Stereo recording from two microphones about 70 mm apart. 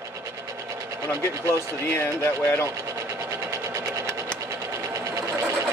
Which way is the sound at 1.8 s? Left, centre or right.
Left.